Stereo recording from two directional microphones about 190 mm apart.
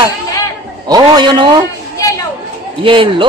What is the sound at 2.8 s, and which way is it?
Speech, 25° right (ahead or behind).